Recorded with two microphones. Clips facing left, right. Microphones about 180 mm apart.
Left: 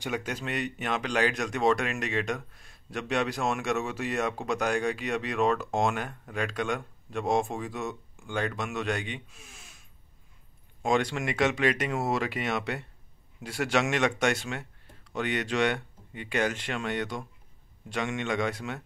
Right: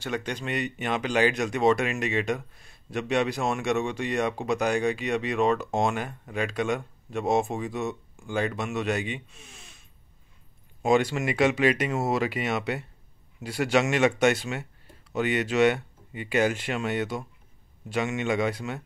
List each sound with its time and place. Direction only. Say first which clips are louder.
0.0 s speech: right 2 dB; 5° left (ahead or behind)